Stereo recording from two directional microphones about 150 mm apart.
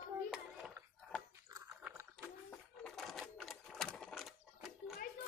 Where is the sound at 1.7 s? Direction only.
5° right (ahead or behind).